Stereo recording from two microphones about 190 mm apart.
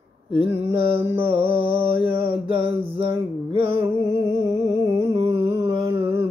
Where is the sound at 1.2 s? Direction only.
30° right (ahead or behind).